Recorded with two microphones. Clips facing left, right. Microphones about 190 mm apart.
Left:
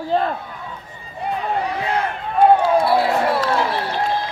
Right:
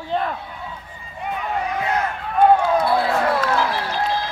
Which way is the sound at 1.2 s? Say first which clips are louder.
Left 3 dB; 35° left (ahead or behind).